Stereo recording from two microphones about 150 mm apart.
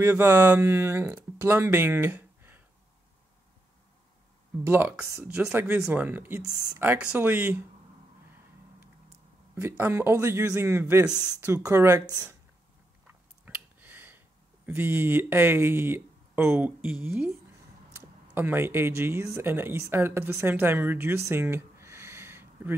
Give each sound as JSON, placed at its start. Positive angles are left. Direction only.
{"t": 0.0, "sound": "speech", "side_deg": -15}
{"t": 4.6, "sound": "speech", "side_deg": -10}
{"t": 6.4, "sound": "speech", "side_deg": -25}
{"t": 6.8, "sound": "speech", "side_deg": -10}
{"t": 9.6, "sound": "speech", "side_deg": -15}
{"t": 13.7, "sound": "a sound", "side_deg": -10}
{"t": 14.7, "sound": "speech", "side_deg": -15}
{"t": 21.3, "sound": "a sound", "side_deg": -15}